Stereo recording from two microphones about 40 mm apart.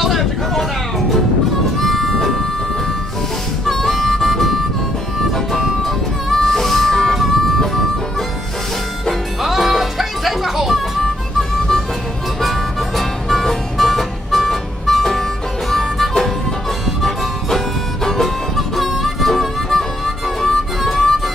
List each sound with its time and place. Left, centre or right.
0.0 s music: centre
3.6 s harmonica: centre
5.5 s music: centre
7.2 s music: centre
9.4 s music: centre
12.4 s harmonica: centre
15.7 s music: centre
18.0 s harmonica: centre